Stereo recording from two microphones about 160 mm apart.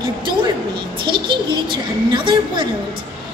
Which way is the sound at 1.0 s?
30° right (ahead or behind).